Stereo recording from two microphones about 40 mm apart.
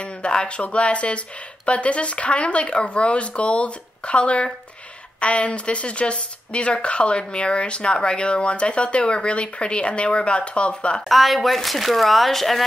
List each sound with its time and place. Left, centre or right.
0.0 s speech: left
11.1 s speech: centre